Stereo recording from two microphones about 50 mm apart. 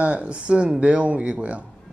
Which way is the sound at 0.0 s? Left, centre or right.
Right.